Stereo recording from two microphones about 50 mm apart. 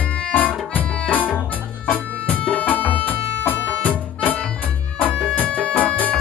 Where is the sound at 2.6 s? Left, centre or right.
Left.